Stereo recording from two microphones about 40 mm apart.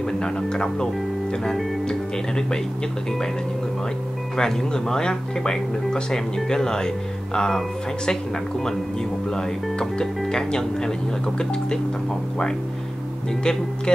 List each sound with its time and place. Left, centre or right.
0.2 s speech: centre
4.4 s speech: centre
13.4 s speech: left